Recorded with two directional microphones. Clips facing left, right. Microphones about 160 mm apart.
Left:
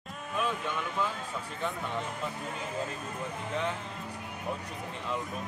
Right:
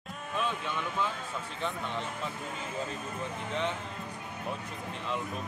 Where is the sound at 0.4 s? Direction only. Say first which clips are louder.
Left 1 dB; 5° left (ahead or behind).